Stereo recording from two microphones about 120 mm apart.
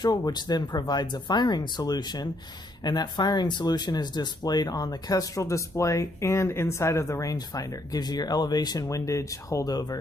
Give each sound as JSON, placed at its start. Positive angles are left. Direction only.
{"t": 0.0, "sound": "speech", "side_deg": 35}